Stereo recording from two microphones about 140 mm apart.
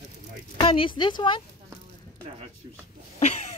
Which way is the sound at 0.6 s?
40° left (ahead or behind).